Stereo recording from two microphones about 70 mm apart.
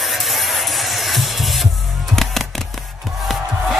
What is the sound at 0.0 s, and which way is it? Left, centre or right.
Music, centre.